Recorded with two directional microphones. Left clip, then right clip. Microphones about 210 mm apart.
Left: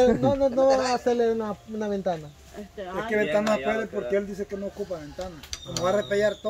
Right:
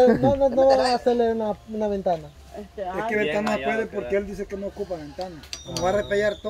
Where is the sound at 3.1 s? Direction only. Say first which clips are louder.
Left 2 dB; 10° right (ahead or behind).